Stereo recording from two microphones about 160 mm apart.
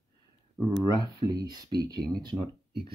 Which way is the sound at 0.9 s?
20° right (ahead or behind).